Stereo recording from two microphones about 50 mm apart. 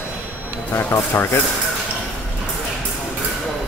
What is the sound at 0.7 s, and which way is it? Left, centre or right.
Speech, left.